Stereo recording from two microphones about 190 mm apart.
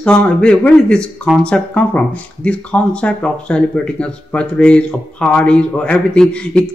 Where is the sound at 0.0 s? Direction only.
5° left (ahead or behind).